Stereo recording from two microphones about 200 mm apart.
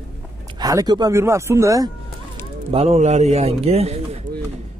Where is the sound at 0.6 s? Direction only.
20° right (ahead or behind).